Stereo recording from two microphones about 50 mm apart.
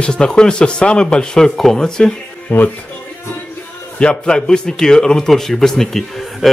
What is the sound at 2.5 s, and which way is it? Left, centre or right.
Speech, left.